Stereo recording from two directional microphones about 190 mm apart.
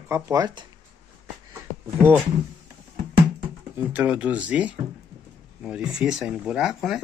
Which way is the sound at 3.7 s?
10° right (ahead or behind).